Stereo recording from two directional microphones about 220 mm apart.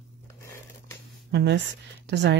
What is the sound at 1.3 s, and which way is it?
Speech, 50° right (ahead or behind).